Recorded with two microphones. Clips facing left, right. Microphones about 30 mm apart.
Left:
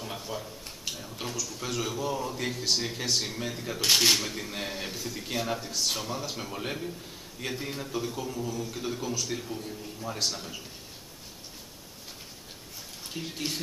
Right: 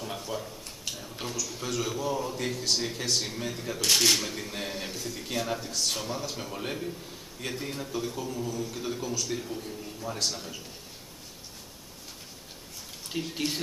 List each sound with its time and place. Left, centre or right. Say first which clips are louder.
0.0 s a man's voice: right 1 dB; centre
13.1 s speech: right 4 dB; centre